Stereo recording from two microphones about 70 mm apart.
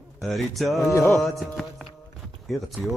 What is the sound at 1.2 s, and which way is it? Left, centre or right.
Music, centre.